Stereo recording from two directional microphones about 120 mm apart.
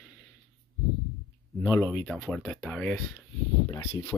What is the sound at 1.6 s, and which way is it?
Speech, 25° left (ahead or behind).